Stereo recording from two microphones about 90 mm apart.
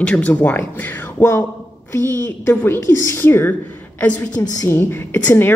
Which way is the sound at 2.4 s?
25° left (ahead or behind).